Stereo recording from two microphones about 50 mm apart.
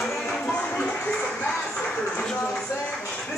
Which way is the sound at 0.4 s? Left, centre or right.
Left.